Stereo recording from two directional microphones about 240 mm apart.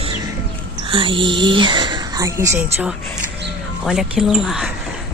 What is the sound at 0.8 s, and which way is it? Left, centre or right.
A woman's voice, right.